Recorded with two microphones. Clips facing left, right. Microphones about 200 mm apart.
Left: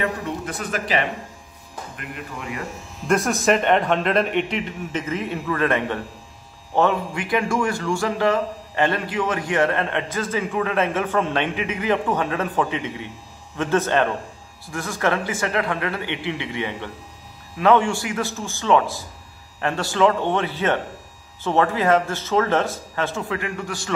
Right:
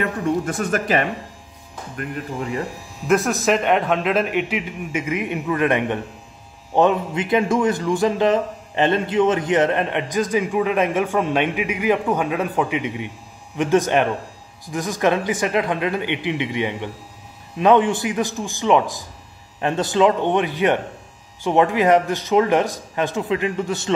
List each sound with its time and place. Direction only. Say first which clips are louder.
0.5 s speech: right 5 dB; 50° right (ahead or behind)
2.0 s speech: right 9 dB; 35° right (ahead or behind)
3.1 s a man's voice: right 1 dB; centre (ahead or behind); by 23.9 s 20° right (ahead or behind)